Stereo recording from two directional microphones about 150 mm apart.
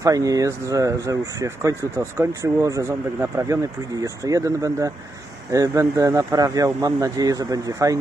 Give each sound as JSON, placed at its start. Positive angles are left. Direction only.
{"t": 0.0, "sound": "speech", "side_deg": -25}